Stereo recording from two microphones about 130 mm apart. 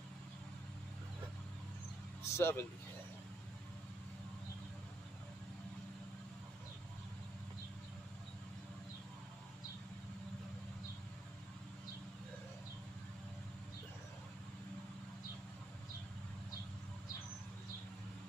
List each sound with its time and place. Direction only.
2.2 s speech: 20° left (ahead or behind)